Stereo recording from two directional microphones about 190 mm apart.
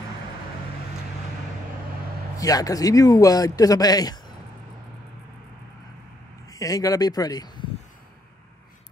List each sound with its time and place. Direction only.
2.3 s speech: 20° left (ahead or behind)
6.5 s speech: 20° left (ahead or behind)